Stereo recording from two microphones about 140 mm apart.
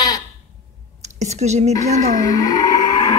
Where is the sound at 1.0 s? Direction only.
55° right (ahead or behind).